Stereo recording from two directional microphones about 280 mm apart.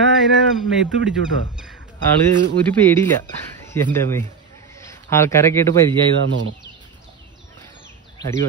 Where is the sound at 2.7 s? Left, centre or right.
Centre.